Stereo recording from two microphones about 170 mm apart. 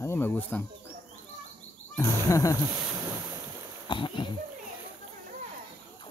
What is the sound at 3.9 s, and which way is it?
Speech, 30° left (ahead or behind).